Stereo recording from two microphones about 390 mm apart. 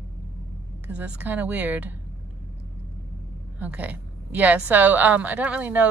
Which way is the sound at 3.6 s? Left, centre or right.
Centre.